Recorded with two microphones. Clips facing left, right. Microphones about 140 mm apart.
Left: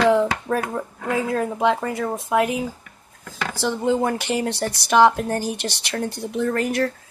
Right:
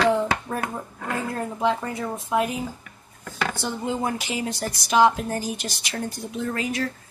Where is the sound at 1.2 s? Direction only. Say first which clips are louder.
Left 5 dB; 90° left; by 6.9 s 60° left (ahead or behind).